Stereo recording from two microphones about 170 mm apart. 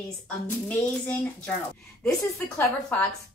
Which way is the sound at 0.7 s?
10° left (ahead or behind).